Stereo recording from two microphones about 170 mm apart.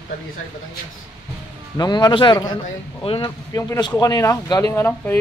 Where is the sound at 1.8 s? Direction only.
25° left (ahead or behind).